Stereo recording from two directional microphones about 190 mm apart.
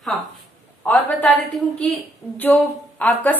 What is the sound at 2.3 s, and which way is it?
Speech, 10° left (ahead or behind).